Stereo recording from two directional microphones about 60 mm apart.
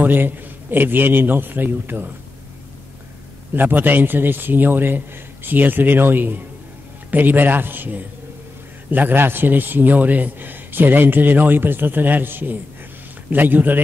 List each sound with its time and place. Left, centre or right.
0.0 s a man's voice: right
3.5 s a man's voice: right